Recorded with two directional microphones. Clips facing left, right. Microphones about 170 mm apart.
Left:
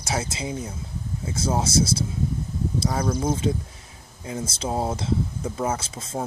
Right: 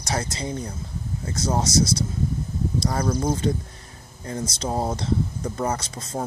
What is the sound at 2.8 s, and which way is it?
Speech, 5° left (ahead or behind).